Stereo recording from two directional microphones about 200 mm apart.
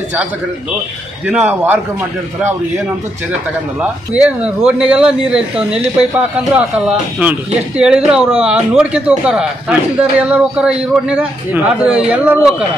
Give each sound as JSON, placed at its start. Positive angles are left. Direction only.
{"t": 1.2, "sound": "speech", "side_deg": -5}
{"t": 3.8, "sound": "speech", "side_deg": -5}